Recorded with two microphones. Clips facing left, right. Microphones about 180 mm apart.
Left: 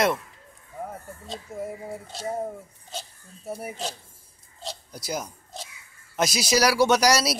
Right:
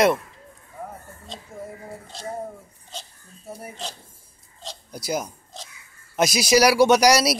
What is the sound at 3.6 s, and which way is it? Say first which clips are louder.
Speech: left 1 dB; 5° left (ahead or behind).